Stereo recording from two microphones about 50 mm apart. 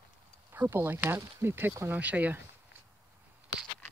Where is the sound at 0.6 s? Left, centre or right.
Right.